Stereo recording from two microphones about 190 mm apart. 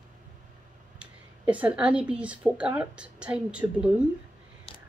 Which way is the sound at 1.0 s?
5° right (ahead or behind).